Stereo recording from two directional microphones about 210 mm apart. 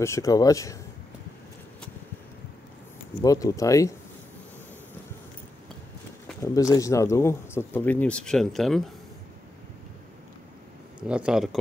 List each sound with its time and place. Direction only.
0.0 s speech: 15° left (ahead or behind)
3.2 s speech: 15° left (ahead or behind)
6.4 s speech: 15° left (ahead or behind)
11.1 s speech: 5° right (ahead or behind)